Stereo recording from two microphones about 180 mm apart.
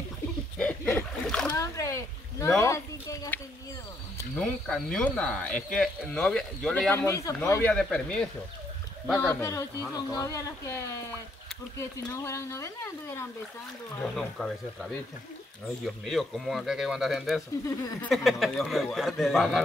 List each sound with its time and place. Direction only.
0.6 s splash: 5° left (ahead or behind)
1.5 s speech: 15° left (ahead or behind)
4.4 s speech: 5° left (ahead or behind)
7.7 s speech: 5° left (ahead or behind)
11.8 s speech: 15° left (ahead or behind)
14.1 s speech: centre (ahead or behind)